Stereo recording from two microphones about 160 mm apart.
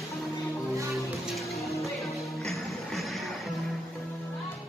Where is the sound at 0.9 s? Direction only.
Centre (ahead or behind).